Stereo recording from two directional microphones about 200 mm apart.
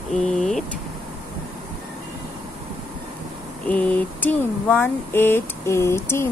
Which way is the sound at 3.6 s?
5° left (ahead or behind).